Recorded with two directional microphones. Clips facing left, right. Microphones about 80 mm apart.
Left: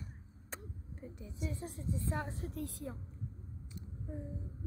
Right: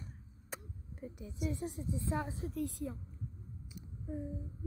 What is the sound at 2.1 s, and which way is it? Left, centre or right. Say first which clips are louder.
Speech: right 2 dB; centre.